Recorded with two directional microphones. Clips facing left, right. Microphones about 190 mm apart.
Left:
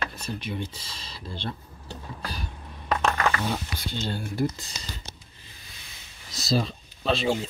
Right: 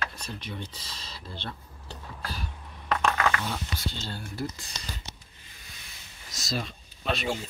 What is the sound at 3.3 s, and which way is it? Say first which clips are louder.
Speech: left 3 dB; 30° left (ahead or behind).